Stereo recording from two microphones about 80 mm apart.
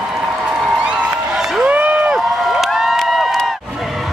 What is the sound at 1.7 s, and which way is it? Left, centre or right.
Run, centre.